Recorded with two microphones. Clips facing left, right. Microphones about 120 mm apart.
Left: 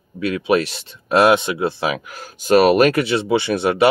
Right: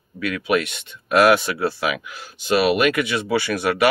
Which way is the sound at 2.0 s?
45° left (ahead or behind).